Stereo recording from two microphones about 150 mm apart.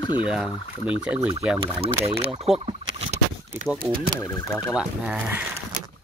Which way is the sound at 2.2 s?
40° right (ahead or behind).